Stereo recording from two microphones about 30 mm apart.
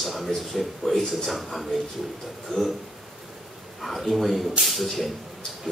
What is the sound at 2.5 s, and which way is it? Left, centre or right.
Speech, left.